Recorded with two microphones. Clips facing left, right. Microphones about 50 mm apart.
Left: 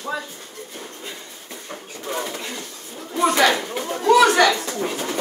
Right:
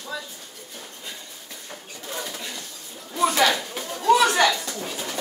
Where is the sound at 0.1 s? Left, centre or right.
Left.